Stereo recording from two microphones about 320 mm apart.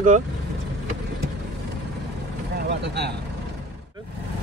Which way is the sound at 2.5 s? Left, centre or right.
Right.